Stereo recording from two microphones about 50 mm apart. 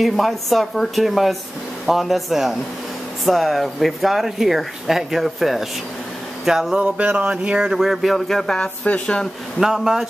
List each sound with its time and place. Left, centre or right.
0.0 s speech: centre
7.2 s speech: right
7.7 s speech: centre
8.3 s speech: centre
8.5 s speech: left
9.6 s speech: centre